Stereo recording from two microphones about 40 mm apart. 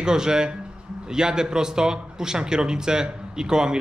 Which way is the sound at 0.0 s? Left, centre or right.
Centre.